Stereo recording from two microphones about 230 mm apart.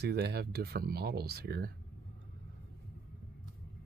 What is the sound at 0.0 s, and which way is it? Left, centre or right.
Speech, right.